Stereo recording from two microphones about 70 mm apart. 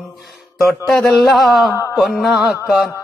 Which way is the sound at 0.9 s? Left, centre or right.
Centre.